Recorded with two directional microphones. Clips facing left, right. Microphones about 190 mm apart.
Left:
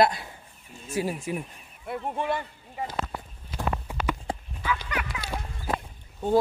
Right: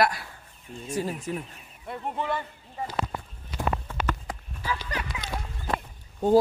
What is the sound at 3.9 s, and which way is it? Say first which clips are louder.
Clip-clop: right 1 dB; 15° left (ahead or behind).